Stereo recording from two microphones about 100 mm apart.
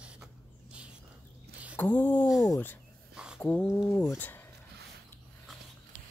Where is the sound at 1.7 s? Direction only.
20° left (ahead or behind).